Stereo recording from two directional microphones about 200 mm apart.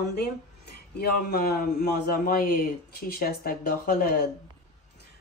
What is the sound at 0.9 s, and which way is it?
A man's voice, 50° left (ahead or behind).